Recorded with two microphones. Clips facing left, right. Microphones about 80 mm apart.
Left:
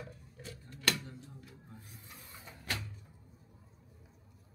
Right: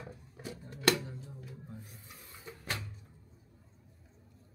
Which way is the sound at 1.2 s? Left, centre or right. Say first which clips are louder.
Right 4 dB; centre.